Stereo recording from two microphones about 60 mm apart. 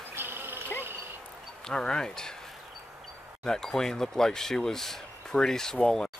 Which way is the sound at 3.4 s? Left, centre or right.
Centre.